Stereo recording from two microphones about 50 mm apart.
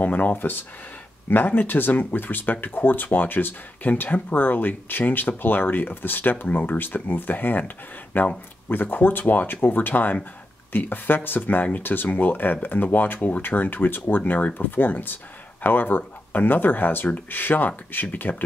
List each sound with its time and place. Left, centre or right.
0.0 s speech: left